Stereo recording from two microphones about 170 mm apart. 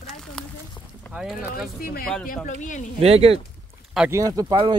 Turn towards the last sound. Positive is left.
turn(degrees=-25)  # may be behind; listen again after turning